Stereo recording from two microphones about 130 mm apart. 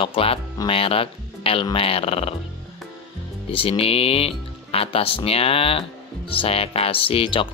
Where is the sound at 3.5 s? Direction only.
45° left (ahead or behind).